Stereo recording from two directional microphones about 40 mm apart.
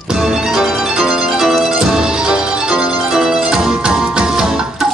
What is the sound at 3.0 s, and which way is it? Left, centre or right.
Music, centre.